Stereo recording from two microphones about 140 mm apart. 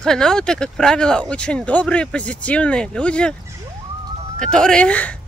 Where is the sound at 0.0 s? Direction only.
5° left (ahead or behind).